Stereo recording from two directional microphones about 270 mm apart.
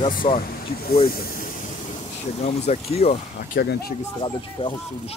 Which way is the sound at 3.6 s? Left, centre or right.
Left.